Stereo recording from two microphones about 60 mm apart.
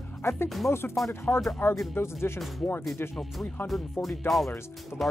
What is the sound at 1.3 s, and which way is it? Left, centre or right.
Speech, left.